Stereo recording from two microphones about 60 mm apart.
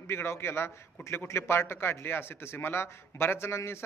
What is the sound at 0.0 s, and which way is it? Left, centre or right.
Speech, left.